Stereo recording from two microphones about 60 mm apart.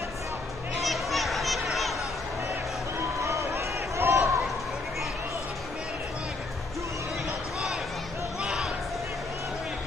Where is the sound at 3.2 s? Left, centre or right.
Right.